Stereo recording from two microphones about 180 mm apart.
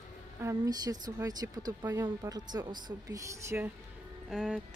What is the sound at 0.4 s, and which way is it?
Speech, 20° right (ahead or behind).